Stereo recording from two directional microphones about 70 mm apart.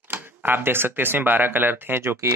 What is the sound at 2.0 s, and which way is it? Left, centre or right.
Speech, right.